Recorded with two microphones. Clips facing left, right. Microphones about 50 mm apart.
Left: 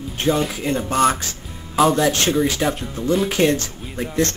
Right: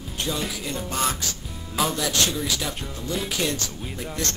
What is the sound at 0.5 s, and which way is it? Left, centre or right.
Speech, left.